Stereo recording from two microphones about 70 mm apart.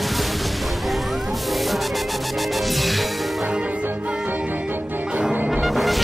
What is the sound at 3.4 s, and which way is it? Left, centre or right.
Music, centre.